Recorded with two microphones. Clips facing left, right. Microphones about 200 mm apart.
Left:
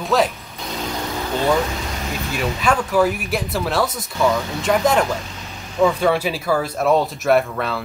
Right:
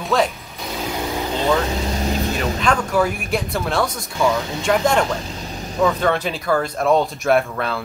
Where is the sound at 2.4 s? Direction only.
5° left (ahead or behind).